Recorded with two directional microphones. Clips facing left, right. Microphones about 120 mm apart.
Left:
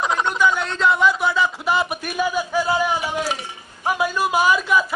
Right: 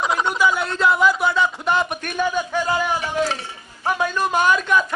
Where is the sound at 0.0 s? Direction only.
5° right (ahead or behind).